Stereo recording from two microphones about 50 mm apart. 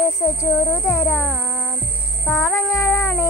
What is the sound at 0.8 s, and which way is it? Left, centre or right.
Speech, left.